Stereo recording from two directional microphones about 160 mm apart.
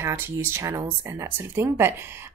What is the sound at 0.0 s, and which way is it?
Speech, 15° right (ahead or behind).